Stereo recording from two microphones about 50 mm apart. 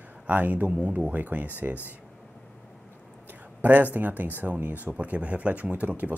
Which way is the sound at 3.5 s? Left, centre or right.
Right.